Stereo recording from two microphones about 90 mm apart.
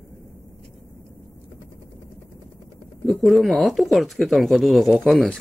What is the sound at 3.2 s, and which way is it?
Speech, centre (ahead or behind).